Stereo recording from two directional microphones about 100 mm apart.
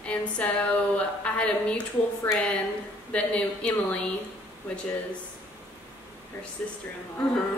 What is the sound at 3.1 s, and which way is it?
Speech, 10° left (ahead or behind).